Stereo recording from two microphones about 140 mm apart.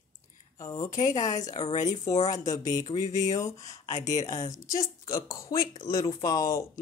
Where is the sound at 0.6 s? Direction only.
25° left (ahead or behind).